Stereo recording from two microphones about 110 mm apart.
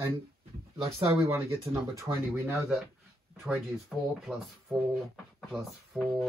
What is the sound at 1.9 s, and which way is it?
Speech, 25° right (ahead or behind).